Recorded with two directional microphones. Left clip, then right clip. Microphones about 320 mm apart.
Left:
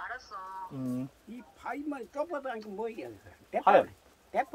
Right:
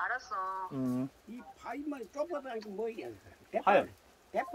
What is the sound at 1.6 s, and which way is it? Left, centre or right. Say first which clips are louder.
Speech: left 3 dB; centre.